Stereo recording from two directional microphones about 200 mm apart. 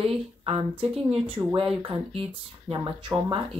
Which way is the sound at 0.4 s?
25° right (ahead or behind).